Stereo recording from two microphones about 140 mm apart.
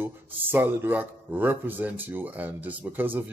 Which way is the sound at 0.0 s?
15° right (ahead or behind).